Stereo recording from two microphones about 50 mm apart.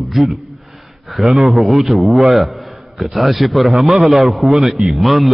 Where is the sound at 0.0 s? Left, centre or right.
Centre.